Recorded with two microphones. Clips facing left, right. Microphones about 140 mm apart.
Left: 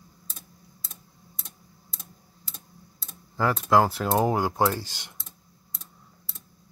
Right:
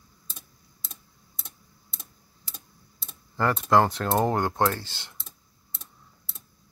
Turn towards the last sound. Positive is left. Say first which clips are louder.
# left 1 dB
turn(degrees=15)  # may be behind; listen again after turning